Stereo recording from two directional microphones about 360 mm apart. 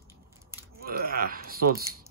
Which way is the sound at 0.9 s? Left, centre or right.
Right.